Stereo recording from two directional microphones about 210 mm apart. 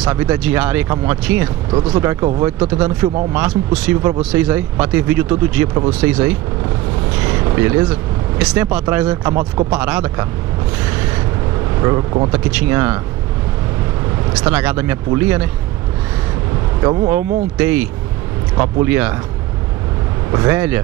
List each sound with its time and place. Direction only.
0.1 s speech: 5° right (ahead or behind)
1.7 s speech: 25° right (ahead or behind)
2.0 s speech: 15° right (ahead or behind)
9.4 s speech: 20° right (ahead or behind)
9.8 s speech: 5° right (ahead or behind)
11.8 s speech: 20° right (ahead or behind)
12.3 s speech: 5° right (ahead or behind)
14.3 s speech: 5° right (ahead or behind)
16.8 s speech: 25° right (ahead or behind)
17.1 s speech: 5° right (ahead or behind)
20.2 s speech: 10° right (ahead or behind)